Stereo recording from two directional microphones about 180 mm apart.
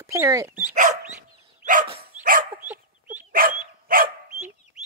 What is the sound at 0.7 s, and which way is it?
Speech, 40° right (ahead or behind).